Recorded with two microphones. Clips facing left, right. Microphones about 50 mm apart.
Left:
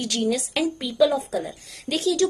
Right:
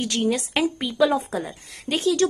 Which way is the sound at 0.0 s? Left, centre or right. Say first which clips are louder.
Right 1 dB; right.